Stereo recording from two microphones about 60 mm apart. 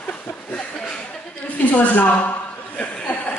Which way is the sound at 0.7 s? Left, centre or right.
Centre.